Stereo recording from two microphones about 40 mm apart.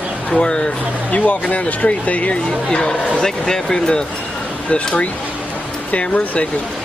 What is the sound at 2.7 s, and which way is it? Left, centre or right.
Speech, centre.